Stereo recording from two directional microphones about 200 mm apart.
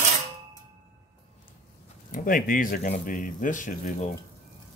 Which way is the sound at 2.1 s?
45° left (ahead or behind).